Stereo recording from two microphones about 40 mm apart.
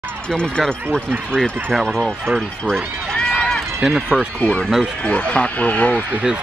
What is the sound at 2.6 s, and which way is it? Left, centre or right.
Run, left.